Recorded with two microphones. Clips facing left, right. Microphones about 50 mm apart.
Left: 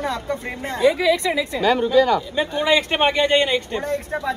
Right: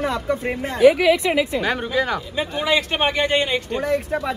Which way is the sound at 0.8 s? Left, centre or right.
Right.